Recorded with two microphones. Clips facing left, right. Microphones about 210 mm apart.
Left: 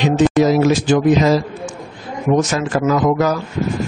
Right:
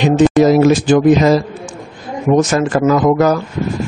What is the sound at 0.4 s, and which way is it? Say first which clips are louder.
A man's voice: right 4 dB; 50° right (ahead or behind).